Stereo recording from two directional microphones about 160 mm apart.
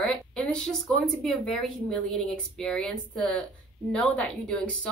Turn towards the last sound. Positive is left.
turn(degrees=5)  # may be behind; listen again after turning